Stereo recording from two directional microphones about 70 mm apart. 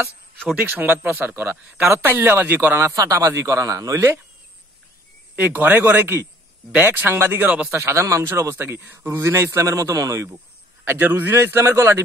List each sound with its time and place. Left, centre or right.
1.0 s speech: right
2.8 s speech: right
5.3 s speech: right
10.9 s speech: right